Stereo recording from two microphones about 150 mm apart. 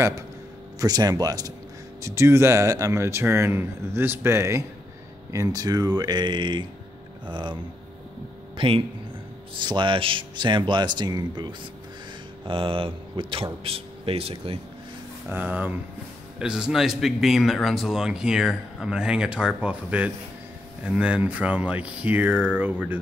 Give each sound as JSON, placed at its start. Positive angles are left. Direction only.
{"t": 0.7, "sound": "speech", "side_deg": -25}
{"t": 8.5, "sound": "speech", "side_deg": -35}
{"t": 15.2, "sound": "speech", "side_deg": -10}